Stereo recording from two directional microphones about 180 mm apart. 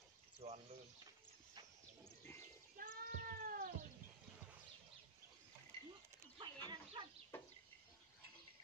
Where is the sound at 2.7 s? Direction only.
50° right (ahead or behind).